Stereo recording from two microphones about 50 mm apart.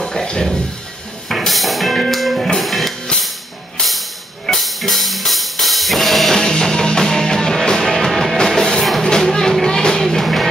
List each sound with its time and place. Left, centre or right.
0.0 s a sound: centre
1.3 s music: centre
3.1 s music: centre
4.5 s music: centre